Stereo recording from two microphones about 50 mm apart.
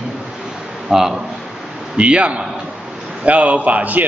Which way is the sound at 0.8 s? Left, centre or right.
Centre.